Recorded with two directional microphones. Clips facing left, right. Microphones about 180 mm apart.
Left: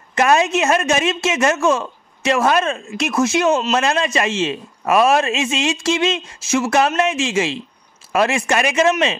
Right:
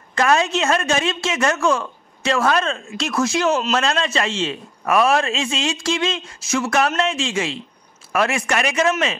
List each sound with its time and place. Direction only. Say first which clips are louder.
0.1 s a woman's voice: left 2 dB; 20° left (ahead or behind)